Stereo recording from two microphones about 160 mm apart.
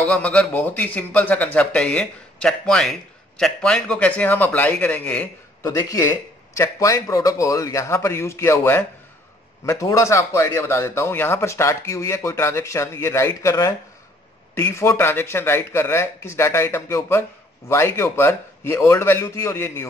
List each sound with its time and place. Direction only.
0.0 s a man's voice: 5° left (ahead or behind)
5.6 s a man's voice: 20° left (ahead or behind)